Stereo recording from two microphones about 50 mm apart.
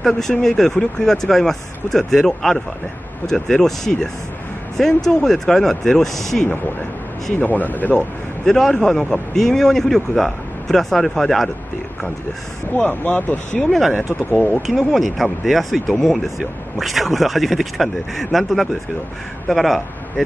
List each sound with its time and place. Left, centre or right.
0.0 s speech: centre
7.3 s speech: left
8.5 s speech: centre
12.7 s speech: left
14.7 s speech: centre